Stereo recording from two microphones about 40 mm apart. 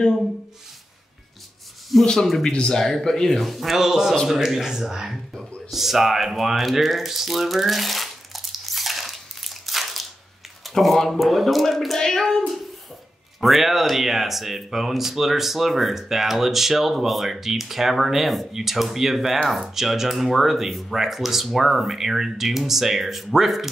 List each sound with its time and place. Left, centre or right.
1.9 s speech: centre
2.5 s speech: left
2.8 s speech: centre
5.7 s a sound: centre
10.6 s speech: centre
12.0 s hands: centre
13.4 s speech: centre